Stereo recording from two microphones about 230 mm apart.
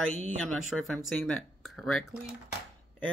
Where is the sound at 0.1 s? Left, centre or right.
Right.